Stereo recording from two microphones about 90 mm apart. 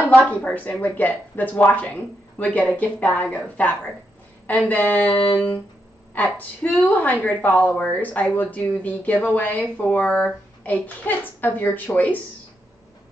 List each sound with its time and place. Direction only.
0.1 s a woman's voice: 15° left (ahead or behind)